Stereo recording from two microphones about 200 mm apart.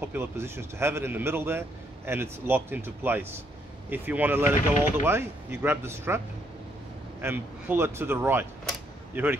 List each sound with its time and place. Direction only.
0.0 s a man's voice: 10° right (ahead or behind)